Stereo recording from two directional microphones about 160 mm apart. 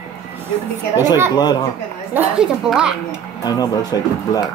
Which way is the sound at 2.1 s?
5° right (ahead or behind).